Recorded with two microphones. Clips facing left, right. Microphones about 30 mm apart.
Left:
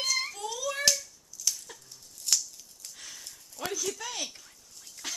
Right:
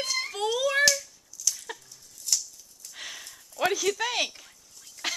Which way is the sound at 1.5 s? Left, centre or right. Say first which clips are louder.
Right 1 dB; centre.